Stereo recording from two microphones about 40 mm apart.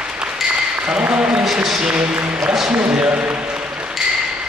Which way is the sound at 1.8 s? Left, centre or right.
Right.